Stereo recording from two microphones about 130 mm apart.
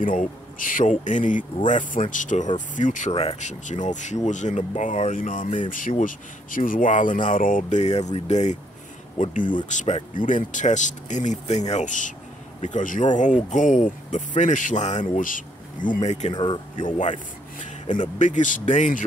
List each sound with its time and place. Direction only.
0.0 s speech: 90° left
3.1 s speech: 50° left (ahead or behind)
3.3 s speech: 65° left (ahead or behind)
9.2 s speech: 85° left
9.7 s speech: 60° left (ahead or behind)
10.1 s speech: 80° left
15.1 s speech: 90° left; by 19.0 s 75° left (ahead or behind)